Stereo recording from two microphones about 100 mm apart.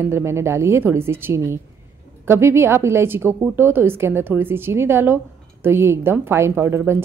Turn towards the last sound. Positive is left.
turn(degrees=-25)  # may be behind; listen again after turning